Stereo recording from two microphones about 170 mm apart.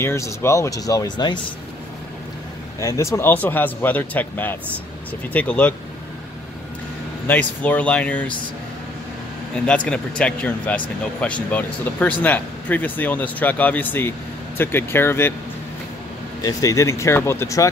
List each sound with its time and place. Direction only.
0.0 s speech: 15° left (ahead or behind)
2.8 s speech: 20° left (ahead or behind)
7.2 s speech: 10° left (ahead or behind)
9.7 s speech: 5° left (ahead or behind)
16.3 s speech: 20° left (ahead or behind)